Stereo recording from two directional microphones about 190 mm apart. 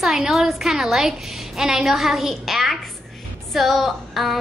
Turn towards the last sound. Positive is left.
turn(degrees=0)  # may be behind; listen again after turning